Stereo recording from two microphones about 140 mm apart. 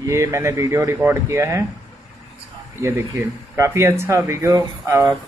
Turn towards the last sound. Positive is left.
turn(degrees=-20)  # may be behind; listen again after turning